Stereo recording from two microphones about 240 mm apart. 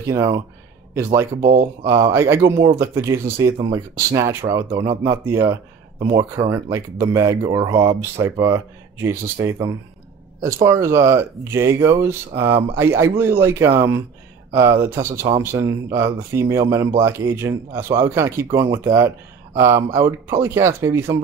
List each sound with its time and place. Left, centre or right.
0.0 s speech: centre
1.4 s speech: right
1.9 s speech: centre